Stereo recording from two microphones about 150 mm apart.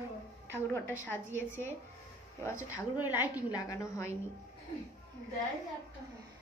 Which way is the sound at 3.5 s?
25° left (ahead or behind).